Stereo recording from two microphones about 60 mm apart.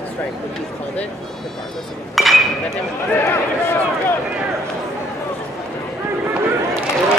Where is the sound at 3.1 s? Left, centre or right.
Left.